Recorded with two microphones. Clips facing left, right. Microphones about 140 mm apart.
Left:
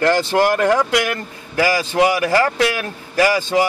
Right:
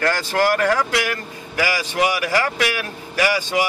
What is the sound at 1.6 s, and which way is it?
A man's voice, 30° left (ahead or behind).